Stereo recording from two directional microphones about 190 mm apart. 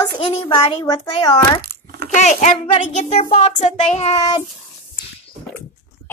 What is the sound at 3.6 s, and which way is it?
Child singing, 35° left (ahead or behind).